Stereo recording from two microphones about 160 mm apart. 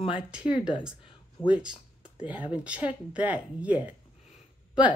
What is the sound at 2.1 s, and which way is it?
Speech, 10° right (ahead or behind).